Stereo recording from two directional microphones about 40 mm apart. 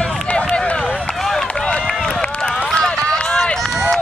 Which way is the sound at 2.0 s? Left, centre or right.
Centre.